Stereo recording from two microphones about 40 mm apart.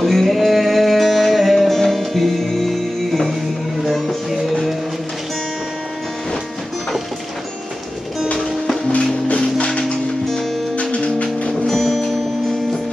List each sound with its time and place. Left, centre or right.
0.0 s music: centre
9.7 s music: left
11.6 s music: centre